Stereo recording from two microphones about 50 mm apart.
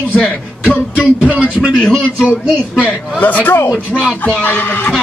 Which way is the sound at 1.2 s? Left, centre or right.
Right.